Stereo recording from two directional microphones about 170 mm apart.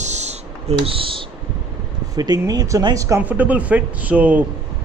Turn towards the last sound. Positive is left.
turn(degrees=-10)  # may be behind; listen again after turning